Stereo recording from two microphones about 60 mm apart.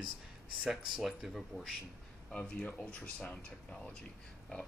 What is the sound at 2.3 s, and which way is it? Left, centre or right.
Speech, centre.